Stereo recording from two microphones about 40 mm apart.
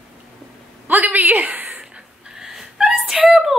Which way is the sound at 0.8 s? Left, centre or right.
Right.